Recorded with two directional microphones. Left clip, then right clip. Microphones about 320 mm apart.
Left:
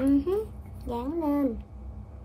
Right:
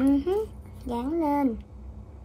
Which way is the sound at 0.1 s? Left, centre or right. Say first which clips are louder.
Right 1 dB; right.